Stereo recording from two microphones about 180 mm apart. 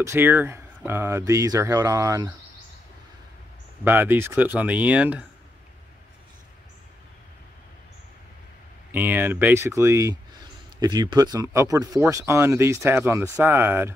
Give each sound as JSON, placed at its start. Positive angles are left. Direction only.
{"t": 0.0, "sound": "speech", "side_deg": -10}
{"t": 3.8, "sound": "speech", "side_deg": -10}
{"t": 8.9, "sound": "speech", "side_deg": -10}